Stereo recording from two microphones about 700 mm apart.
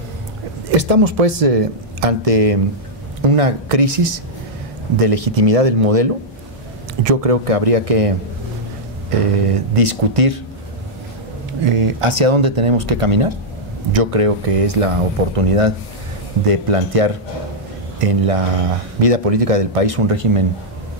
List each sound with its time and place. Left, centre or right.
0.7 s speech: right
9.2 s speech: right
11.6 s speech: right